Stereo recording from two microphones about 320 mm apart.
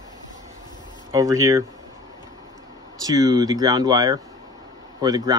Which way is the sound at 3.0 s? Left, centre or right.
Centre.